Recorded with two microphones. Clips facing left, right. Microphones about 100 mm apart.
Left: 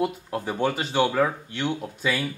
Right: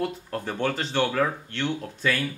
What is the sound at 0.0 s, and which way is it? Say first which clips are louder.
Speech: left 3 dB; 10° left (ahead or behind).